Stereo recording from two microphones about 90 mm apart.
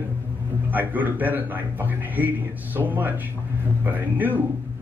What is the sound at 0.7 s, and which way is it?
A man's voice, 20° right (ahead or behind).